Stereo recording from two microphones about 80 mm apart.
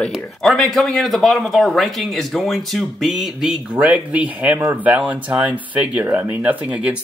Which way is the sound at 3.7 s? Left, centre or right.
Centre.